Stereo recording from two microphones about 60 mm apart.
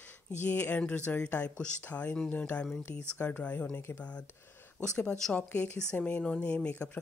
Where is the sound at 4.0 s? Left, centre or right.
Left.